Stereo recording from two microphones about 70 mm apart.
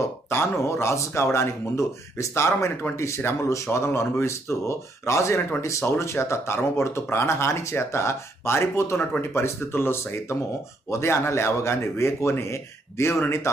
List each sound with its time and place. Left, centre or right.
0.0 s speech: left